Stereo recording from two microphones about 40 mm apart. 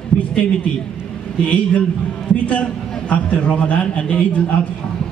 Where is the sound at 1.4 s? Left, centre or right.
Left.